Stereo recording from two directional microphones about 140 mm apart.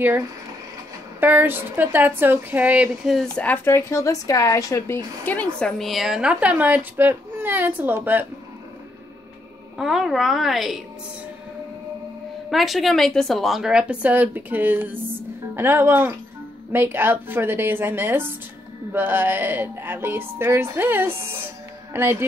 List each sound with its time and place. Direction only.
1.2 s speech: 15° right (ahead or behind)
3.2 s a woman's voice: 10° left (ahead or behind)
5.6 s speech: centre (ahead or behind)
9.8 s a woman's voice: centre (ahead or behind)
12.4 s a woman's voice: centre (ahead or behind); by 22.2 s 15° right (ahead or behind)